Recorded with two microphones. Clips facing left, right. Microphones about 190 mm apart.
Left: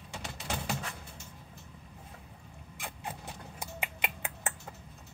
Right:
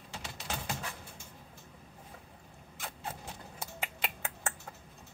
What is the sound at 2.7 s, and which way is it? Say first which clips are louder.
Vehicle: left 1 dB; 15° left (ahead or behind).